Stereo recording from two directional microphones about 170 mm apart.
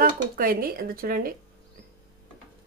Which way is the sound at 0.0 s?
60° right (ahead or behind).